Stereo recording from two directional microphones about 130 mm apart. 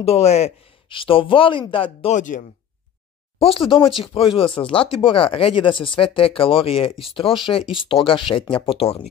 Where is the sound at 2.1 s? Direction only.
85° left.